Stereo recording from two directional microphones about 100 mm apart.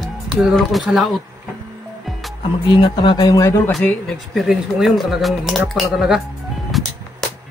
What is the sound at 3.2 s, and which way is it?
Speech, 40° left (ahead or behind).